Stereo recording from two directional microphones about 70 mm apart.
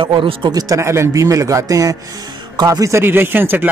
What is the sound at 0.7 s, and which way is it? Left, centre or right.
A man's voice, right.